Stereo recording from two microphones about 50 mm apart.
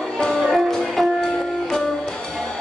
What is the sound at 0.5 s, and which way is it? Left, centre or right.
Music, centre.